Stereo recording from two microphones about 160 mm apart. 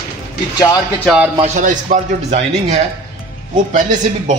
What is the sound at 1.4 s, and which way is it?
A man's voice, 50° right (ahead or behind).